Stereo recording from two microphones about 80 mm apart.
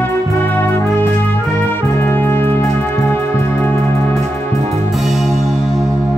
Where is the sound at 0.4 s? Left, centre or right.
Left.